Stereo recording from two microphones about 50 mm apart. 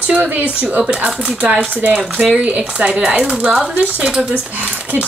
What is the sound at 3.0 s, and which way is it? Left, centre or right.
Speech, centre.